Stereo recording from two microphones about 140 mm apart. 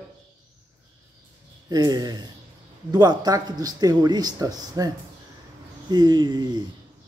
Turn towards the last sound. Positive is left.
turn(degrees=-30)  # may be behind; listen again after turning